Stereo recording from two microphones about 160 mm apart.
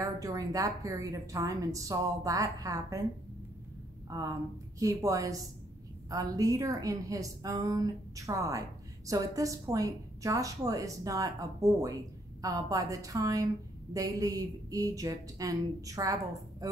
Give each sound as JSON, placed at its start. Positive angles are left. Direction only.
{"t": 0.0, "sound": "a woman's voice", "side_deg": -20}
{"t": 4.1, "sound": "a woman's voice", "side_deg": -20}